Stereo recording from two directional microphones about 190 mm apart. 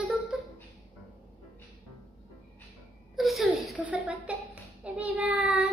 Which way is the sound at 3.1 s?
Centre (ahead or behind).